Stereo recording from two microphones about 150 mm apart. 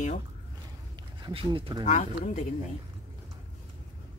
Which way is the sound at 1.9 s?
55° left (ahead or behind).